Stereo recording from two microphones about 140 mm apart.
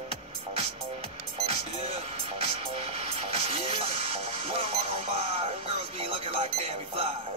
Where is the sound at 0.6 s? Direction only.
50° right (ahead or behind).